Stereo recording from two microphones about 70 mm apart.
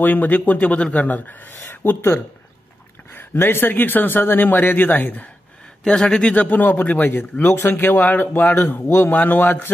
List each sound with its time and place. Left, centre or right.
0.0 s a man's voice: left
5.9 s a man's voice: centre; by 9.7 s left